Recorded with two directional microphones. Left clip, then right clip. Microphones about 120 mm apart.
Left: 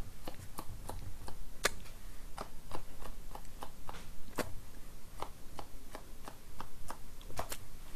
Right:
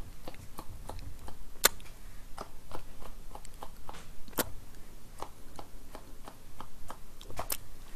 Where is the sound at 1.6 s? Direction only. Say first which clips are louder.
Right 6 dB; 30° right (ahead or behind).